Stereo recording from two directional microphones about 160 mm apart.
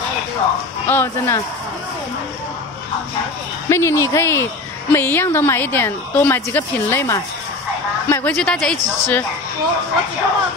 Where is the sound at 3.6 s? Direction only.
15° left (ahead or behind).